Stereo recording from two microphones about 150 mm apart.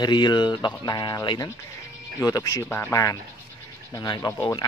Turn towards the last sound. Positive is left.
turn(degrees=20)  # may be behind; listen again after turning